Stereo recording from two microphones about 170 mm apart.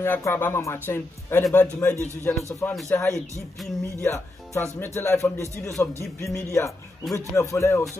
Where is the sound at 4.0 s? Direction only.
15° left (ahead or behind).